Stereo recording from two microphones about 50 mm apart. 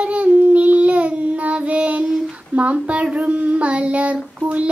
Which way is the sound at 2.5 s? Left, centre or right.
Right.